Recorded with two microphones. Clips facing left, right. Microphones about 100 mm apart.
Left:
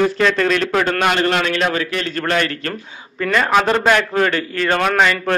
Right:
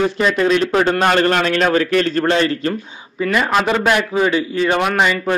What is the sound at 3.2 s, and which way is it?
A man's voice, 5° right (ahead or behind).